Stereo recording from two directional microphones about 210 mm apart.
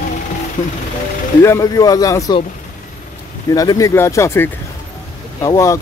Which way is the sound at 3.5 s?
15° left (ahead or behind).